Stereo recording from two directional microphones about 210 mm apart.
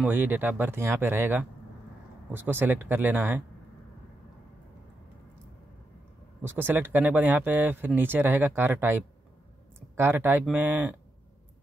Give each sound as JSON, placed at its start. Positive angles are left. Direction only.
{"t": 0.0, "sound": "speech", "side_deg": -10}
{"t": 6.4, "sound": "speech", "side_deg": -10}